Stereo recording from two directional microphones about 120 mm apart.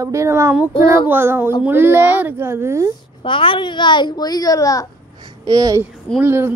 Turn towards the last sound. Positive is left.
turn(degrees=-20)  # may be behind; listen again after turning